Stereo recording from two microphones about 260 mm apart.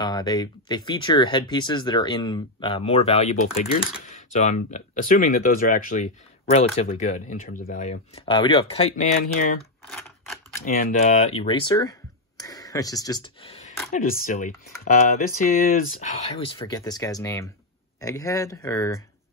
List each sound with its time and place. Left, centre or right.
0.0 s speech: centre
9.2 s speech: left
9.8 s typewriter: centre
10.6 s speech: left; by 18.9 s centre